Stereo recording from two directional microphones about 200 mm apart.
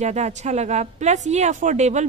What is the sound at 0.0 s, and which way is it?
A woman's voice, 35° right (ahead or behind).